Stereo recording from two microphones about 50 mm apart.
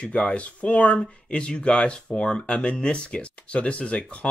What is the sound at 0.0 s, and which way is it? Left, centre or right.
Speech, left.